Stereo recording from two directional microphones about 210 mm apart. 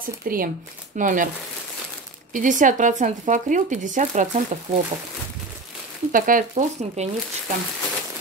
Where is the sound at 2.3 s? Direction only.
40° right (ahead or behind).